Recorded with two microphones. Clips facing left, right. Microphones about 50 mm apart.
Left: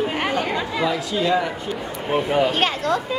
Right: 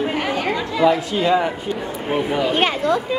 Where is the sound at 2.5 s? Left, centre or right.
Centre.